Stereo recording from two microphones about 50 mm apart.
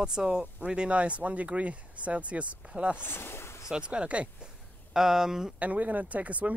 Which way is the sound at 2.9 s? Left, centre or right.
Left.